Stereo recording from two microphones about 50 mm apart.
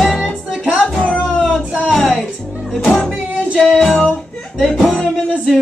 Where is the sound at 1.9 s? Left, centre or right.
Centre.